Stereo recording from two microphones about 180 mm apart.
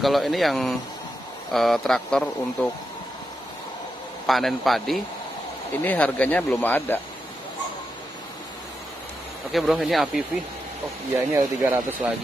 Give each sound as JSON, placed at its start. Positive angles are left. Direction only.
{"t": 0.0, "sound": "speech", "side_deg": 0}
{"t": 4.3, "sound": "speech", "side_deg": 0}
{"t": 9.5, "sound": "speech", "side_deg": 0}
{"t": 11.1, "sound": "speech", "side_deg": -20}